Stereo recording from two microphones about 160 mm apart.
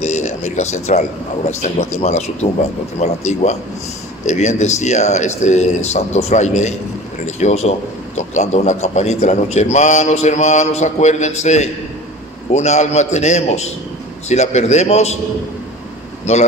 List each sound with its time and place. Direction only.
0.0 s a man's voice: 45° left (ahead or behind)
16.3 s speech: 40° left (ahead or behind)